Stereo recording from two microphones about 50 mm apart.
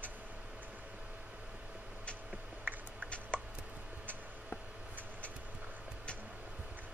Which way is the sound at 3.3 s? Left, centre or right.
Left.